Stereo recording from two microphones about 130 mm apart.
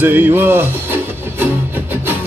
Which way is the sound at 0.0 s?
15° right (ahead or behind).